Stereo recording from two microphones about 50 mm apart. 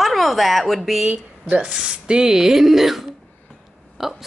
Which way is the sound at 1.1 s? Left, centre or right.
Right.